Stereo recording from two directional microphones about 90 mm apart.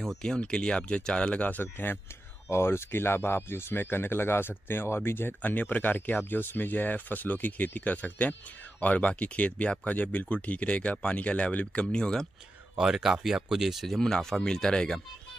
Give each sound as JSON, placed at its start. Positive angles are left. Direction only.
{"t": 0.0, "sound": "speech", "side_deg": 5}
{"t": 12.7, "sound": "speech", "side_deg": -5}